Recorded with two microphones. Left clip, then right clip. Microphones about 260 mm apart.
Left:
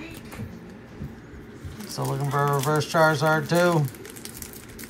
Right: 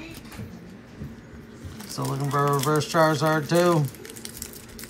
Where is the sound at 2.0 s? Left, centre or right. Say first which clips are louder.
Even; centre.